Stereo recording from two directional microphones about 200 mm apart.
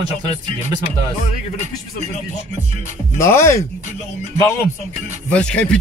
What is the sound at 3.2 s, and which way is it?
Speech, 15° left (ahead or behind).